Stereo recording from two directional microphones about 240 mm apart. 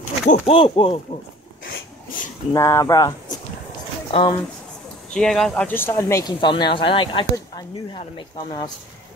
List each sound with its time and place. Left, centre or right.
0.3 s speech: left
2.5 s speech: centre
5.1 s speech: centre